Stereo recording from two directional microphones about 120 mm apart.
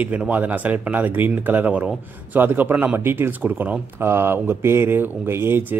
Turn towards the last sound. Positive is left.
turn(degrees=-20)  # may be behind; listen again after turning